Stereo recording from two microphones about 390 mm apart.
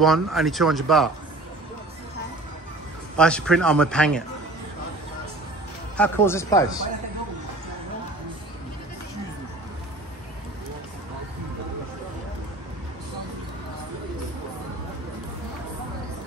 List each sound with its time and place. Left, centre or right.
0.0 s speech: centre
3.2 s speech: centre
5.9 s speech: centre